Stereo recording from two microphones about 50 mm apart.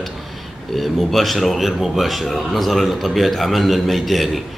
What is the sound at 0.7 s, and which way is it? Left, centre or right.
Speech, centre.